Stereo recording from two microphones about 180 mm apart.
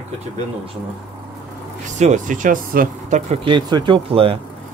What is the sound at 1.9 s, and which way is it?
Speech, 40° right (ahead or behind).